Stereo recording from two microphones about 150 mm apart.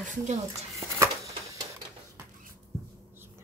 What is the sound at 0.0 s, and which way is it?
Speech, 55° right (ahead or behind).